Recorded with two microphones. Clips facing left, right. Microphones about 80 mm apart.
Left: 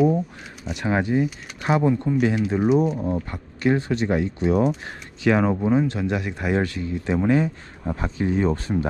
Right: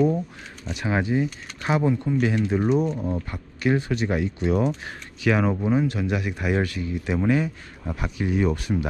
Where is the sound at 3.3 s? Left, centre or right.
Left.